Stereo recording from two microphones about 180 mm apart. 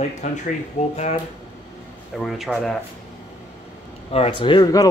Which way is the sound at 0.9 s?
35° left (ahead or behind).